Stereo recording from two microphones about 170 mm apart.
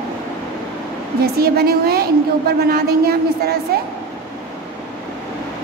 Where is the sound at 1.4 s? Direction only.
65° right (ahead or behind).